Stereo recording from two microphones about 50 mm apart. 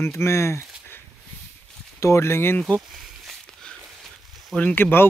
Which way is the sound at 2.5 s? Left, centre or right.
Left.